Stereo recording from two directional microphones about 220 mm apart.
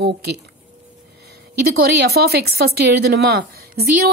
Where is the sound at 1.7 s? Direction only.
45° right (ahead or behind).